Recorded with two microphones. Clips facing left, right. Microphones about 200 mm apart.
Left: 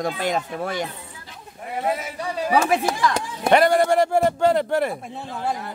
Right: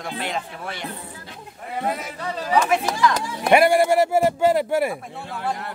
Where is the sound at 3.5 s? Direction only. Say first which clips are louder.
Right 1 dB; 10° right (ahead or behind).